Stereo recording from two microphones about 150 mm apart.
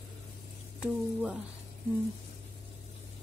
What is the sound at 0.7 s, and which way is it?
Speech, 5° right (ahead or behind).